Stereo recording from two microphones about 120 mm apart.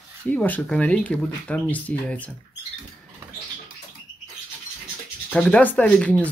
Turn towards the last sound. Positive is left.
turn(degrees=10)  # may be behind; listen again after turning